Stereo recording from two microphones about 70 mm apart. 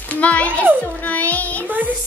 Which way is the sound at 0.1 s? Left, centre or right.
Centre.